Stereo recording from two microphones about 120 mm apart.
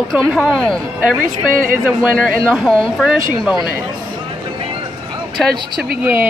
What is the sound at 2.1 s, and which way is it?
Speech, centre (ahead or behind).